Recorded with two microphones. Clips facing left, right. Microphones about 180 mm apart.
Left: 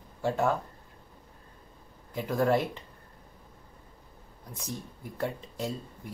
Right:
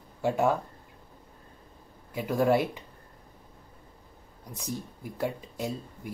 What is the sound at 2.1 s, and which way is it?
Speech, 10° right (ahead or behind).